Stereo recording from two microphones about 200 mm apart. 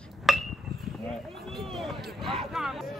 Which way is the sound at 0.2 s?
Centre (ahead or behind).